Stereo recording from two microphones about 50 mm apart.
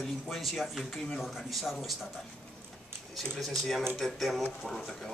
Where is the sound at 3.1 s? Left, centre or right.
Centre.